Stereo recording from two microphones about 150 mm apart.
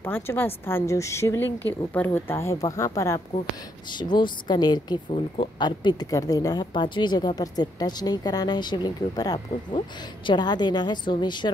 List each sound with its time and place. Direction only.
0.0 s a woman's voice: 15° left (ahead or behind); by 11.5 s 30° left (ahead or behind)